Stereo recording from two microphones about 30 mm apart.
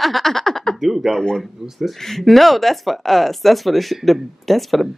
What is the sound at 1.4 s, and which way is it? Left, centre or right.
Speech, centre.